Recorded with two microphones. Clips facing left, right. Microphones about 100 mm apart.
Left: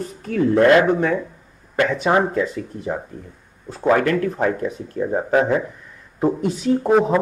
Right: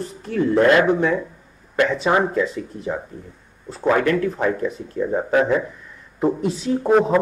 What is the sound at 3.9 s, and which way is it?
Speech, 45° left (ahead or behind).